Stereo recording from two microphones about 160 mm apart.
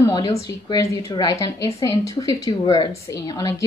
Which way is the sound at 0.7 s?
20° left (ahead or behind).